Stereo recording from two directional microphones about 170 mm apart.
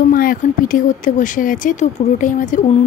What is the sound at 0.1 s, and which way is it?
A woman's voice, 55° left (ahead or behind).